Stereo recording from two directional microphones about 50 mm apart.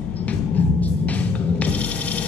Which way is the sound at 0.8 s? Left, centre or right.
Left.